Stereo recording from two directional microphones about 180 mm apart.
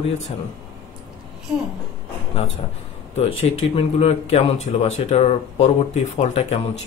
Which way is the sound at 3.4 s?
35° left (ahead or behind).